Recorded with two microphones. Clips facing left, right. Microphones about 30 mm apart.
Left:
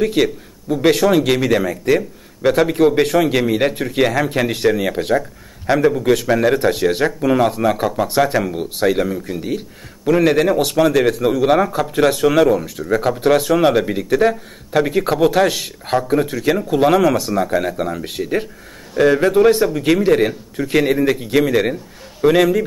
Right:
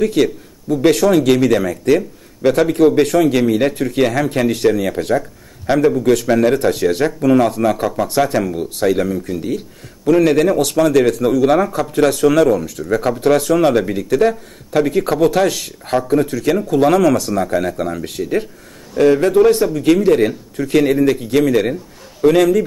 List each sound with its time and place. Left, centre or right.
0.0 s speech: centre